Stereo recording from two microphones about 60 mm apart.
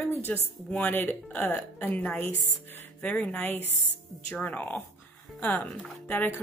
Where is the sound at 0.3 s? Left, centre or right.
Left.